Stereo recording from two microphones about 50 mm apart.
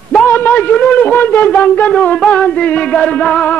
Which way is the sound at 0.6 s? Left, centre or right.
Left.